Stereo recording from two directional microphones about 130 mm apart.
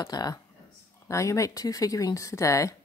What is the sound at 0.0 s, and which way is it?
Speech, 30° left (ahead or behind).